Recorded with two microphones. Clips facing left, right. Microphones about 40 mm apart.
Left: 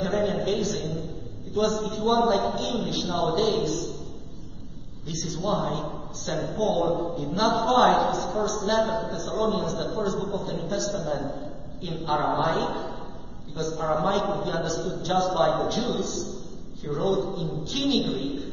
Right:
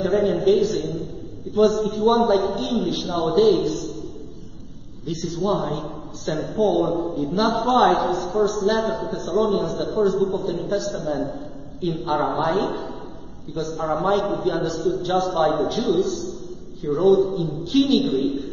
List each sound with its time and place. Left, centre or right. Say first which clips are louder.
0.0 s a man's voice: right 6 dB; centre
5.0 s a man's voice: right 6 dB; centre